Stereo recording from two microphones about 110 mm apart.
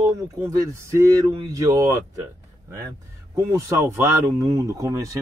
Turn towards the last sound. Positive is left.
turn(degrees=-30)  # may be behind; listen again after turning